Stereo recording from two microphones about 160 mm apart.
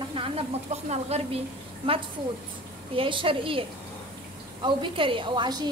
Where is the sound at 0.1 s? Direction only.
35° right (ahead or behind).